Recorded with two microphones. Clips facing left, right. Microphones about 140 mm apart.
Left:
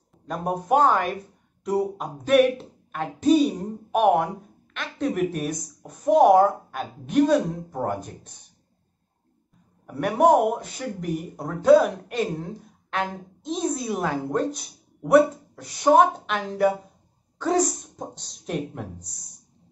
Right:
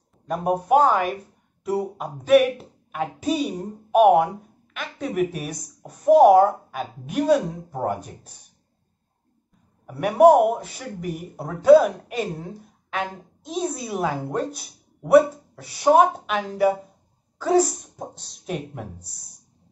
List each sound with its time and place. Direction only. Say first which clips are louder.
0.3 s a woman's voice: right 3 dB; 5° right (ahead or behind)
9.8 s a woman's voice: right 4 dB; 5° right (ahead or behind)